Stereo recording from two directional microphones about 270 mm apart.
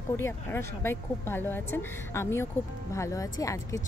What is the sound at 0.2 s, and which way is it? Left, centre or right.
Speech, centre.